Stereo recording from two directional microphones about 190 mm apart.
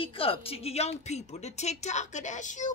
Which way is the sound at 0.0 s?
30° left (ahead or behind).